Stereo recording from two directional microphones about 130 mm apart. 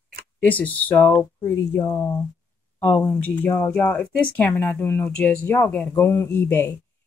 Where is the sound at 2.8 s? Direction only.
10° left (ahead or behind).